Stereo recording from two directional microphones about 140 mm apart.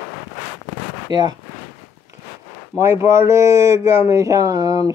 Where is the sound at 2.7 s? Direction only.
20° right (ahead or behind).